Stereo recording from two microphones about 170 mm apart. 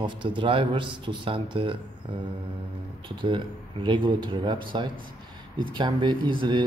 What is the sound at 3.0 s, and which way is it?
Speech, 30° right (ahead or behind).